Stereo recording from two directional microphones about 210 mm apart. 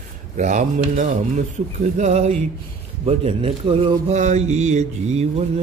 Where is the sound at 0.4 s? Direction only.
35° right (ahead or behind).